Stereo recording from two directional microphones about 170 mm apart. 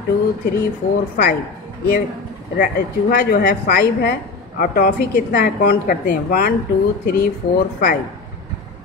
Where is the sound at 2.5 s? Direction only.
55° left (ahead or behind).